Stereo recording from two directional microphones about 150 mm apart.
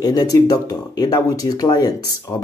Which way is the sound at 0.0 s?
25° left (ahead or behind).